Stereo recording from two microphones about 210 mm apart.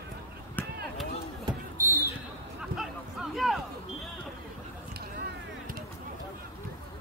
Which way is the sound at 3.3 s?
Centre (ahead or behind).